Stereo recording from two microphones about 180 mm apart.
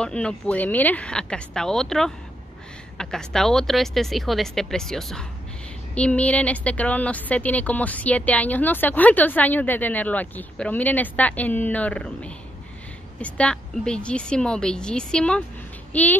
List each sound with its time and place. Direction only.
0.0 s a woman's voice: 5° left (ahead or behind)